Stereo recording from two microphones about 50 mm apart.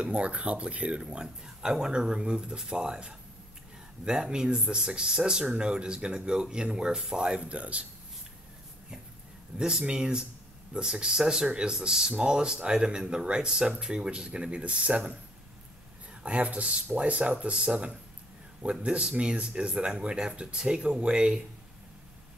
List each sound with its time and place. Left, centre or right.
0.0 s speech: right
7.3 s speech: right
9.6 s speech: centre
16.2 s speech: right